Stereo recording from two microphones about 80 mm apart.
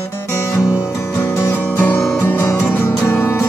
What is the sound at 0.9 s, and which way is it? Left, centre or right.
Music, left.